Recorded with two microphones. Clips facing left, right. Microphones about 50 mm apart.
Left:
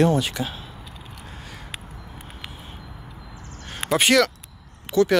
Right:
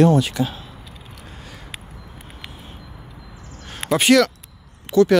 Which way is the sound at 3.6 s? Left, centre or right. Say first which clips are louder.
Right 3 dB; centre.